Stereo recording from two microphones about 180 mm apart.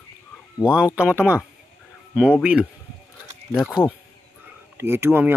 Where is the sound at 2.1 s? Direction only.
5° right (ahead or behind).